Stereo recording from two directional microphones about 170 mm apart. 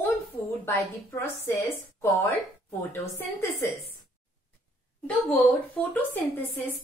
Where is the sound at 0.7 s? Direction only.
15° left (ahead or behind).